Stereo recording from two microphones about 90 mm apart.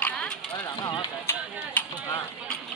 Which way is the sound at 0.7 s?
45° left (ahead or behind).